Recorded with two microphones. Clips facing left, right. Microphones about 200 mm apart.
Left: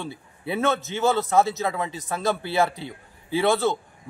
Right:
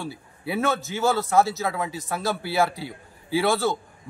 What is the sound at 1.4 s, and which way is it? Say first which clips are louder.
Speech: right 1 dB; 20° left (ahead or behind).